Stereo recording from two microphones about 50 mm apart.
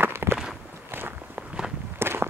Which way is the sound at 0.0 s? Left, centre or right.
Right.